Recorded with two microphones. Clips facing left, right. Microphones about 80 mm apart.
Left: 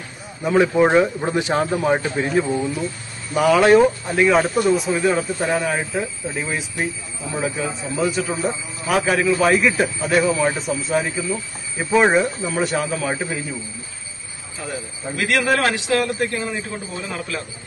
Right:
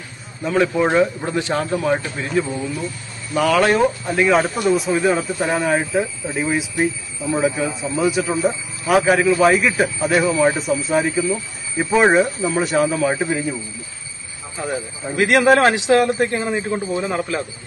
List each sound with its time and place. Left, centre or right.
0.4 s speech: centre
3.5 s a man's voice: centre
7.3 s speech: centre
7.6 s a man's voice: centre
14.6 s a man's voice: right